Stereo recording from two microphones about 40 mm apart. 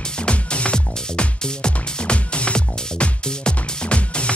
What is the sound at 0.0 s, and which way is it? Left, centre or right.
Music, left.